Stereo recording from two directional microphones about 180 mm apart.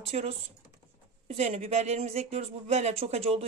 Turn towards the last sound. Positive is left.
turn(degrees=-35)  # may be behind; listen again after turning